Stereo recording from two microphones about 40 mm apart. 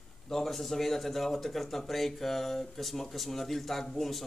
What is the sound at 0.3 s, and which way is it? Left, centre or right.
Speech, centre.